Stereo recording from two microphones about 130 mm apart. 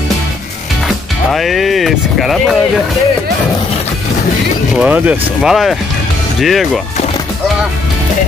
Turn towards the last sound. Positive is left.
turn(degrees=0)  # may be behind; listen again after turning